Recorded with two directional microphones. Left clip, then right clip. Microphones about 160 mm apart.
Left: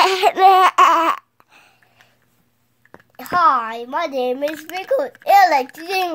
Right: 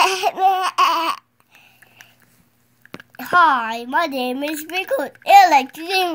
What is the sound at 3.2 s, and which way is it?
A woman's voice, 10° left (ahead or behind).